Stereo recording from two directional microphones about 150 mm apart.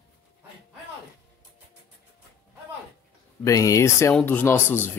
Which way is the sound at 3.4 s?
20° left (ahead or behind).